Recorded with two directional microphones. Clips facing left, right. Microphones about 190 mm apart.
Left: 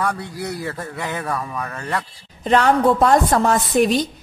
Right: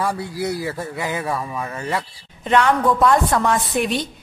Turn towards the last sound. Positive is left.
turn(degrees=40)  # may be behind; listen again after turning